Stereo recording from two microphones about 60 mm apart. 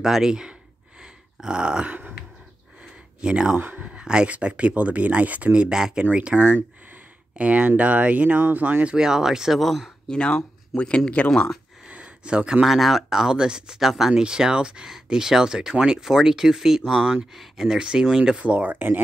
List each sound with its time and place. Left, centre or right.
0.0 s speech: centre
1.0 s grunt: centre
2.8 s a sound: centre
3.5 s speech: right
3.8 s speech: centre
6.1 s speech: right
8.9 s speech: centre
10.1 s speech: centre
10.7 s speech: centre
11.1 s speech: centre
11.8 s a sound: centre
12.6 s speech: centre; by 18.9 s right